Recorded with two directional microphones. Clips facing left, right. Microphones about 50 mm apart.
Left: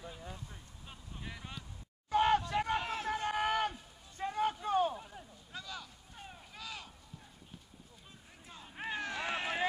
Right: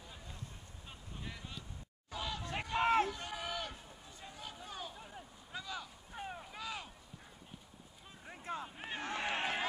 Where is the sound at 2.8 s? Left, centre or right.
Right.